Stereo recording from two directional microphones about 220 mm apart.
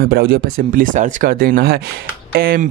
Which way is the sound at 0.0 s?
45° right (ahead or behind).